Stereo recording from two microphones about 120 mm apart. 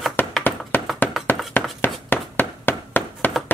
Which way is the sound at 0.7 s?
15° left (ahead or behind).